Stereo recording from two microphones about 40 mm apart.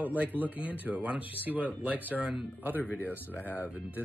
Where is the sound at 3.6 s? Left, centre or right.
Right.